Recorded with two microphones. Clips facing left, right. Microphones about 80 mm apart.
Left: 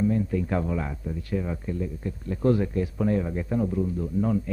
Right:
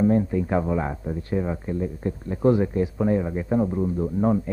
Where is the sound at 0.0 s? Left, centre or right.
Right.